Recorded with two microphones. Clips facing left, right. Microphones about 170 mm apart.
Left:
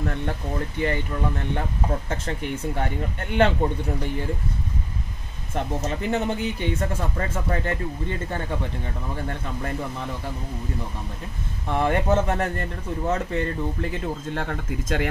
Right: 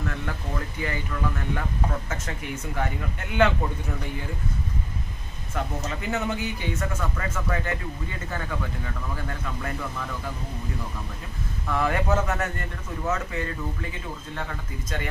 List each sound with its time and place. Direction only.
0.0 s speech: 30° left (ahead or behind)
5.5 s a man's voice: 30° left (ahead or behind)
11.6 s a man's voice: 30° left (ahead or behind)
14.0 s speech: 50° left (ahead or behind)